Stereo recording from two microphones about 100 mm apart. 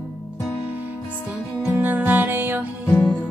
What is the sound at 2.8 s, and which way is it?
Music, 15° left (ahead or behind).